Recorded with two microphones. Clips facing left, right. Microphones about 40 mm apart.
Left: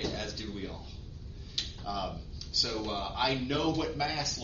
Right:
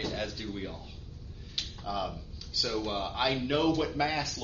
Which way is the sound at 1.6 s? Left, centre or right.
Centre.